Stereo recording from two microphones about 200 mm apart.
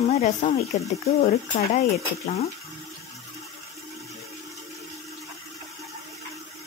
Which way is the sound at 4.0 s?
Centre (ahead or behind).